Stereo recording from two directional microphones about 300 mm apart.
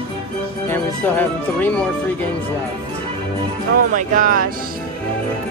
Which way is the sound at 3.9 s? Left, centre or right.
Right.